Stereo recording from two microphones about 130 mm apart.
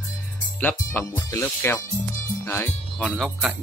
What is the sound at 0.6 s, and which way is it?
Speech, 15° left (ahead or behind).